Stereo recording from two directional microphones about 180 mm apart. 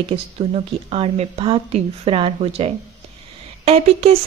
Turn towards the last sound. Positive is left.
turn(degrees=-35)  # may be behind; listen again after turning